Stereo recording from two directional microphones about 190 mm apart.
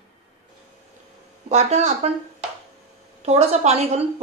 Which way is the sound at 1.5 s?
35° right (ahead or behind).